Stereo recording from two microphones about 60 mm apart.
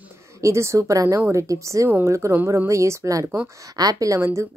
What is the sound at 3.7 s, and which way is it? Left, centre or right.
Speech, right.